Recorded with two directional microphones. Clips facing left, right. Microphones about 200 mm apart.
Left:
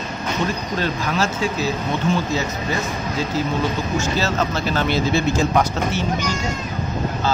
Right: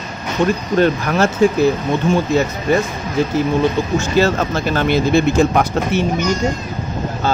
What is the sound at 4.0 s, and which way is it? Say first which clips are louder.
Speech: right 6 dB; 50° right (ahead or behind).